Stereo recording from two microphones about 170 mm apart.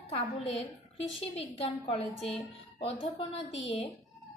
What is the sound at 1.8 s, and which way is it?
Speech, 35° left (ahead or behind).